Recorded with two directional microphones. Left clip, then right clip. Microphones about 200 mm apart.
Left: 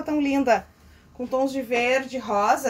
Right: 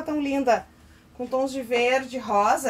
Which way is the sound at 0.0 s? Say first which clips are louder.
Left 1 dB; 15° left (ahead or behind).